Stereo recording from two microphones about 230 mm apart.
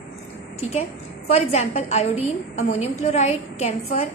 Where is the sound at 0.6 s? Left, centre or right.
Left.